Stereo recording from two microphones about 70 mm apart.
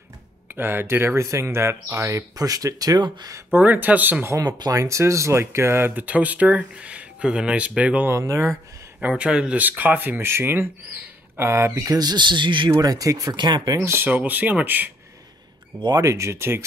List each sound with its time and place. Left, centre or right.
0.6 s speech: right
3.5 s speech: right
4.3 s speech: right; by 8.1 s centre
8.1 s speech: right
9.0 s speech: centre
9.6 s speech: right
12.0 s speech: right
13.3 s speech: right
13.7 s speech: right
14.0 s speech: right
16.0 s speech: right